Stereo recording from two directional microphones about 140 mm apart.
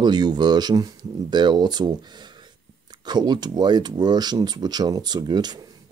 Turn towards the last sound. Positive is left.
turn(degrees=-30)  # may be behind; listen again after turning